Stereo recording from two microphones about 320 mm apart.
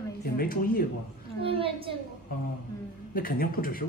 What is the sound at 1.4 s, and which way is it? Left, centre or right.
Speech, centre.